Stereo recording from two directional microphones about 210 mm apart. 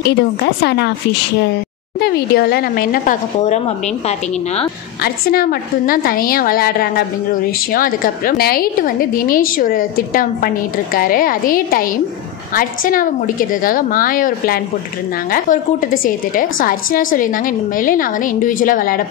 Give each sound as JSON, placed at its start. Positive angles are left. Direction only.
{"t": 0.0, "sound": "a woman's voice", "side_deg": 50}
{"t": 2.0, "sound": "a woman's voice", "side_deg": 45}
{"t": 5.0, "sound": "a woman's voice", "side_deg": 45}